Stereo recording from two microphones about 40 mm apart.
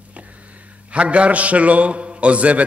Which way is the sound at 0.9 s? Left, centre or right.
Right.